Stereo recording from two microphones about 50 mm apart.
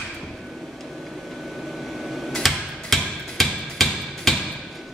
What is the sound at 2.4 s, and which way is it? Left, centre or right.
Music, centre.